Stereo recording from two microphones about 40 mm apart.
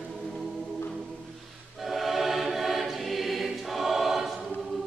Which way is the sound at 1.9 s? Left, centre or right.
Centre.